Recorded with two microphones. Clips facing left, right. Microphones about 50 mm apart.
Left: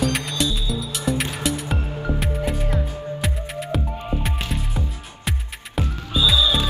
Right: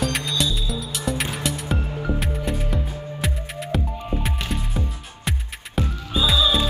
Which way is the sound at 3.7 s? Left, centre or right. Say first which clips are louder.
Right 1 dB; centre.